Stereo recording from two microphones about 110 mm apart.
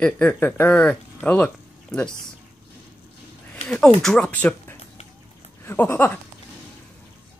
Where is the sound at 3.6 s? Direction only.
10° left (ahead or behind).